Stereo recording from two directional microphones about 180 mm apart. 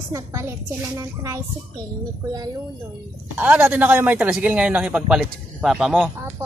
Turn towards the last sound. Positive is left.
turn(degrees=-5)  # may be behind; listen again after turning